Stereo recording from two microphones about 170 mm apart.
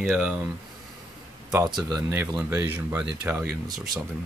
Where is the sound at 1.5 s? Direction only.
20° right (ahead or behind).